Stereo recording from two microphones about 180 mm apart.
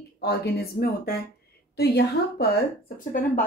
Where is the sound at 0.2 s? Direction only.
65° left (ahead or behind); by 3.3 s 50° left (ahead or behind).